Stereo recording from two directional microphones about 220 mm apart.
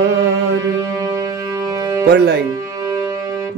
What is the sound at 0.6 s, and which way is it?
Music, 15° right (ahead or behind).